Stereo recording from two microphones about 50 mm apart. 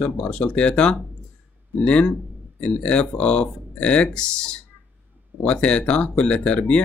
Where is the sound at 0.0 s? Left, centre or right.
Left.